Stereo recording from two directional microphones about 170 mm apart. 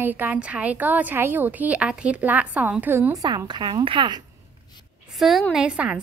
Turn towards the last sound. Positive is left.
turn(degrees=-5)  # may be behind; listen again after turning